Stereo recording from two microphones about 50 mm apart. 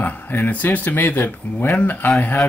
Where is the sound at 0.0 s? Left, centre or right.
Left.